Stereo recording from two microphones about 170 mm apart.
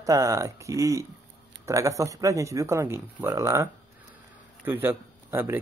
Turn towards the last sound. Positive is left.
turn(degrees=-15)  # may be behind; listen again after turning